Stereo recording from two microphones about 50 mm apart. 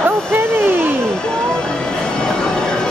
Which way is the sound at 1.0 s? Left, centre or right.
Centre.